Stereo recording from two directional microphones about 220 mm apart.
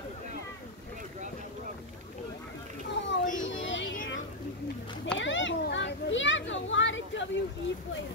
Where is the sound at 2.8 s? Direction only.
55° left (ahead or behind).